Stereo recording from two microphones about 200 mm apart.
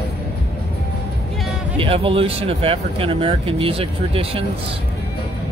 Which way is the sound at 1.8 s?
30° right (ahead or behind).